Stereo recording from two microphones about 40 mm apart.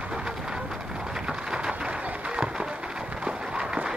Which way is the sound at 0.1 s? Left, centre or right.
Right.